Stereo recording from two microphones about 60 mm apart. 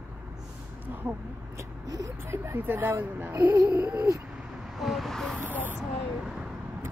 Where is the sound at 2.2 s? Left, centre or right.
Right.